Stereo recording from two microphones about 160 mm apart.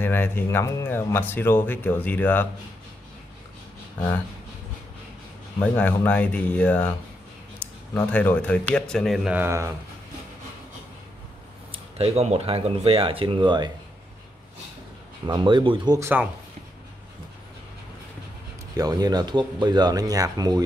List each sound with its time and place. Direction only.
0.0 s speech: 15° left (ahead or behind)
5.6 s speech: 10° left (ahead or behind)
7.9 s speech: 10° left (ahead or behind)
9.4 s speech: 15° right (ahead or behind)
11.7 s speech: 40° right (ahead or behind)
15.2 s speech: 30° right (ahead or behind)
18.8 s speech: 25° right (ahead or behind)